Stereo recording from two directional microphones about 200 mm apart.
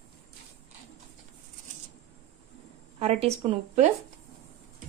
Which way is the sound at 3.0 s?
30° right (ahead or behind).